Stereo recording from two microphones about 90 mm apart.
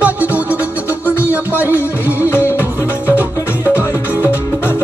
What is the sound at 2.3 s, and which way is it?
Music, 25° left (ahead or behind).